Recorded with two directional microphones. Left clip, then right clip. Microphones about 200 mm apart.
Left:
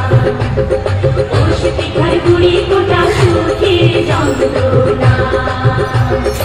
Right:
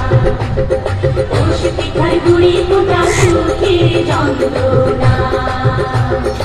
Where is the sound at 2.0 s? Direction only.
25° right (ahead or behind).